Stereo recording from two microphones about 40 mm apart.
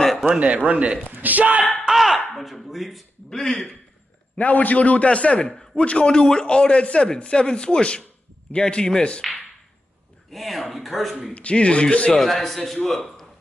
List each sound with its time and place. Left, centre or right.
0.4 s speech: right
1.9 s a sound: centre
2.3 s a man's voice: centre
3.3 s speech: centre
4.4 s a man's voice: left
5.5 s a man's voice: centre
10.3 s a man's voice: centre
11.3 s a man's voice: left
12.1 s a man's voice: centre